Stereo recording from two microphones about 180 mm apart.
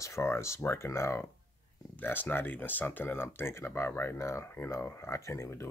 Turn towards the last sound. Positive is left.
turn(degrees=15)  # may be behind; listen again after turning